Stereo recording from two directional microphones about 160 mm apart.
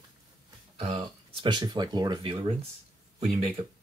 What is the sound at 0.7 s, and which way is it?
Speech, 35° right (ahead or behind).